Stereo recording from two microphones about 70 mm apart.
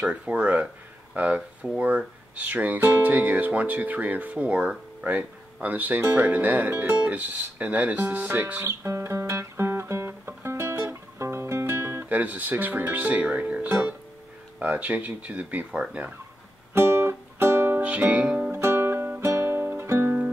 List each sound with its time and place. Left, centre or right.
0.0 s speech: centre
7.0 s music: right
13.7 s speech: right
16.7 s music: right
17.8 s music: centre
18.5 s music: right